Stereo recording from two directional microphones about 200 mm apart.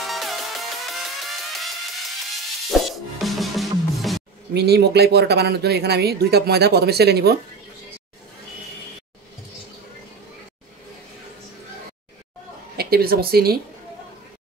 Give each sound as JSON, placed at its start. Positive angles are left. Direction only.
{"t": 0.0, "sound": "music", "side_deg": 0}
{"t": 4.6, "sound": "speech", "side_deg": -55}
{"t": 12.7, "sound": "a sound", "side_deg": -50}